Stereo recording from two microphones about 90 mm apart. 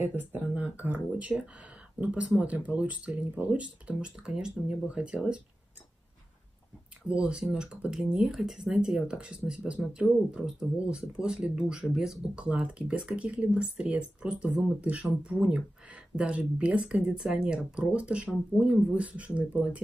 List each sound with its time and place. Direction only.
0.1 s speech: 15° right (ahead or behind)
7.1 s speech: 10° right (ahead or behind)